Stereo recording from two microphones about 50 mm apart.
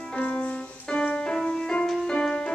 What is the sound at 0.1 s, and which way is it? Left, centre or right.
Music, left.